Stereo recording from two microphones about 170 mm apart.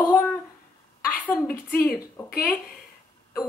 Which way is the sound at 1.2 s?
10° left (ahead or behind).